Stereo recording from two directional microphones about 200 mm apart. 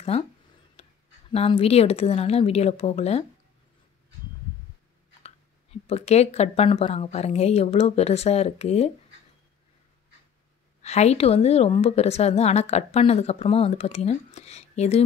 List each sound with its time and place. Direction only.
0.8 s a sound: 30° left (ahead or behind)
1.3 s a woman's voice: 30° left (ahead or behind)
5.2 s a woman's voice: 30° left (ahead or behind)
10.8 s a woman's voice: 35° left (ahead or behind)